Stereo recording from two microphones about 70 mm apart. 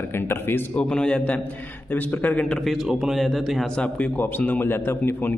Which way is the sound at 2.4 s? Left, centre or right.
Centre.